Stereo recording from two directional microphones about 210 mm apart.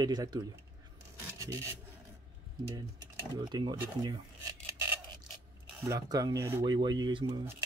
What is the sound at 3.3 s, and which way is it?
Speech, 20° right (ahead or behind).